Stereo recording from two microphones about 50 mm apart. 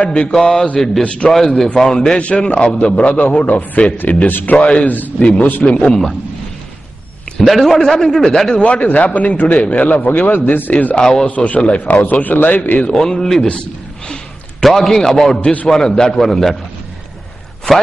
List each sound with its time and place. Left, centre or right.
0.0 s a man's voice: left
0.3 s a man's voice: centre
1.0 s a man's voice: centre
1.3 s a man's voice: centre; by 5.9 s left
5.9 s a man's voice: centre
7.4 s a man's voice: centre
8.6 s a man's voice: left
11.0 s a man's voice: centre
11.2 s a man's voice: left
12.9 s a man's voice: centre